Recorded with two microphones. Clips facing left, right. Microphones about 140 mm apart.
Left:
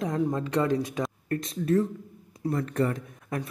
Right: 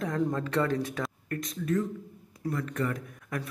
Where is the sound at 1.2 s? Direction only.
30° left (ahead or behind).